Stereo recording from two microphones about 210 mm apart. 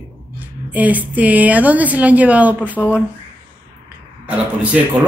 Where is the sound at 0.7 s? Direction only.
5° right (ahead or behind).